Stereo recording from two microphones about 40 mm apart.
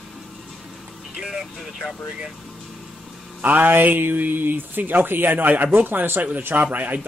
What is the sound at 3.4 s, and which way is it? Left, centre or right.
Speech, right.